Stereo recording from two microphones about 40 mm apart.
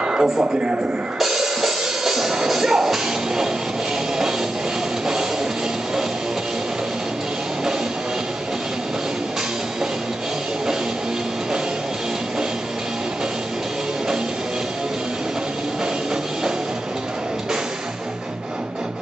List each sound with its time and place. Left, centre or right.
0.0 s speech: right
1.2 s music: centre